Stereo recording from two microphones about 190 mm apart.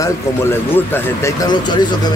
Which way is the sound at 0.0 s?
15° left (ahead or behind).